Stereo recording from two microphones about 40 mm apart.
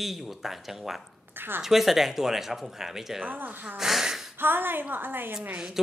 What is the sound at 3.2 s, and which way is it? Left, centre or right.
Speech, right.